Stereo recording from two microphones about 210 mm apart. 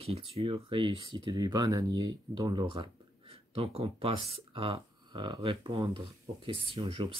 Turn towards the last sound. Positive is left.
turn(degrees=-25)  # may be behind; listen again after turning